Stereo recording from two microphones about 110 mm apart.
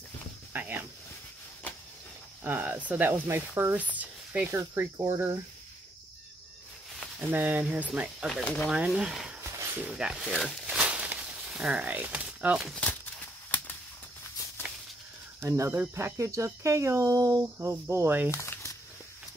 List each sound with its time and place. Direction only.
0.5 s speech: 15° right (ahead or behind)
2.4 s speech: 20° right (ahead or behind)
7.2 s speech: 15° right (ahead or behind)
8.3 s speech: 5° left (ahead or behind)
8.6 s speech: 5° right (ahead or behind)
9.4 s a sound: 25° right (ahead or behind)
9.8 s speech: 5° right (ahead or behind)
10.2 s a sound: 5° left (ahead or behind)
13.5 s a sound: 15° left (ahead or behind)
15.4 s speech: 25° right (ahead or behind)
18.3 s speech: 25° left (ahead or behind)